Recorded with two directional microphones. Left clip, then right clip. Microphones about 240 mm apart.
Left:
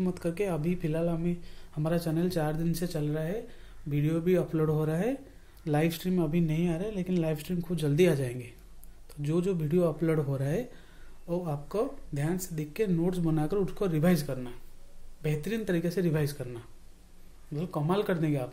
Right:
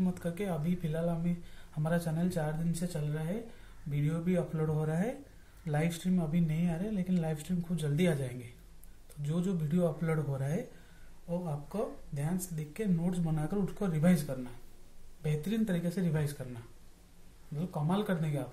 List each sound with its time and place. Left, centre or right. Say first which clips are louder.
0.0 s speech: left 6 dB; left
15.2 s speech: left 3 dB; left